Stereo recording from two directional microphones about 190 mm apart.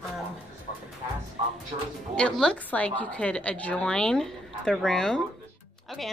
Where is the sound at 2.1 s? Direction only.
5° left (ahead or behind).